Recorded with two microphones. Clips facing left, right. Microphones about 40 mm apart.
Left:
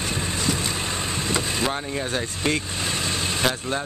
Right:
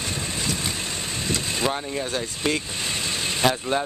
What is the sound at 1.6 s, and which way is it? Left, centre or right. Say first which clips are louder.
Speech: even; centre.